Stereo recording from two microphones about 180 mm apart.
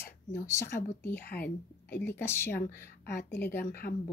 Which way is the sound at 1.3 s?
60° left (ahead or behind).